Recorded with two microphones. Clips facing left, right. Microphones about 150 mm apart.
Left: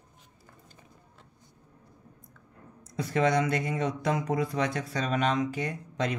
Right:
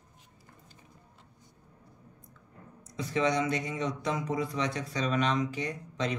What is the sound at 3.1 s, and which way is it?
Speech, 55° left (ahead or behind).